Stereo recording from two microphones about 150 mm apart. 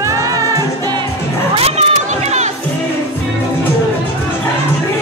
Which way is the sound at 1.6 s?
45° right (ahead or behind).